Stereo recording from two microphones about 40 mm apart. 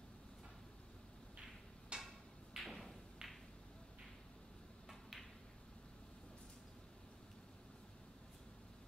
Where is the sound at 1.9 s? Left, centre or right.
Right.